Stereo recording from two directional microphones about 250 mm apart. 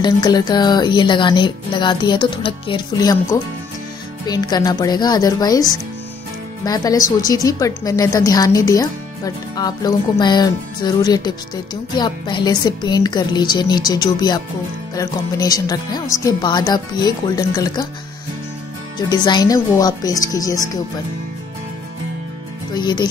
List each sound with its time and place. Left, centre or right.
0.0 s a woman's voice: centre
18.9 s a woman's voice: centre
22.8 s a woman's voice: centre